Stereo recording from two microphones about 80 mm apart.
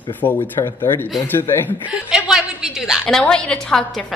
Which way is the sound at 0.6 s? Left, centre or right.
Left.